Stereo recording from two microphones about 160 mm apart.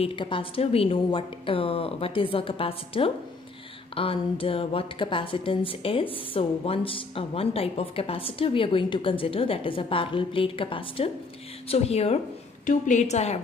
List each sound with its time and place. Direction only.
0.0 s a woman's voice: 30° left (ahead or behind)